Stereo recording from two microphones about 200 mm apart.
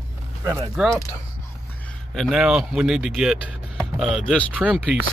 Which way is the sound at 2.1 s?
Centre (ahead or behind).